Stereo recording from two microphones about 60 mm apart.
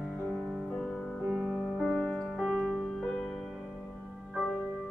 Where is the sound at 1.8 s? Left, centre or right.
Centre.